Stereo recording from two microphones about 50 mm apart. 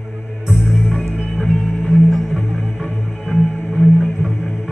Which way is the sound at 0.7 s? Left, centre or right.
Centre.